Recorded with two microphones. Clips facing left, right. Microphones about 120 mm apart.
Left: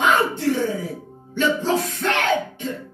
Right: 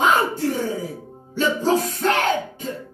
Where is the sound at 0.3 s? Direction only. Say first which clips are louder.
Left 2 dB; 40° right (ahead or behind).